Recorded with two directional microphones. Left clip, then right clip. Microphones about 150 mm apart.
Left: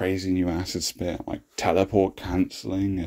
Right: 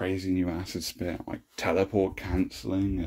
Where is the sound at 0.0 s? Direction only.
30° left (ahead or behind).